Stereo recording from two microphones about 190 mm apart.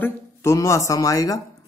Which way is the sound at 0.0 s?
15° left (ahead or behind).